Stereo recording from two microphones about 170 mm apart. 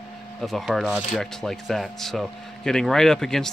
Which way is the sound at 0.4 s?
Centre (ahead or behind).